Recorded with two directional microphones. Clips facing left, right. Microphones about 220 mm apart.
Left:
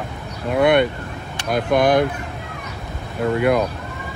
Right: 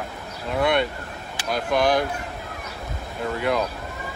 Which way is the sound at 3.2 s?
65° left (ahead or behind).